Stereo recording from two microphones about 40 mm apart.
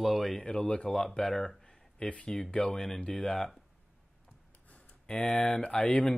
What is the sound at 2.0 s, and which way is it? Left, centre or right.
Speech, left.